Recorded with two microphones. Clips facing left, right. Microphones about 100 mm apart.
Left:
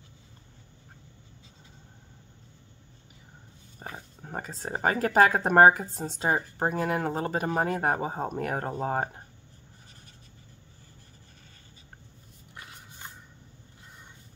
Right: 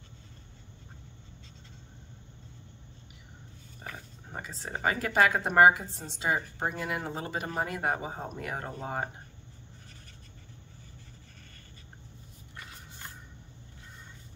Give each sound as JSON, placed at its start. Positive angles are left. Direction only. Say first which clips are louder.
{"t": 3.8, "sound": "speech", "louder": "left 3 dB", "side_deg": 35}